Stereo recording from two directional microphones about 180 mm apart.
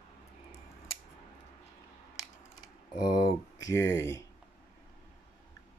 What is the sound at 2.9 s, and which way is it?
Speech, 25° left (ahead or behind).